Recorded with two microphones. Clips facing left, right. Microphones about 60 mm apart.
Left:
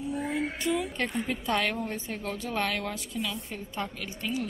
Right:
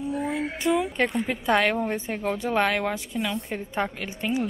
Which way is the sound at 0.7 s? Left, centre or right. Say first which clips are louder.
Right 6 dB; centre.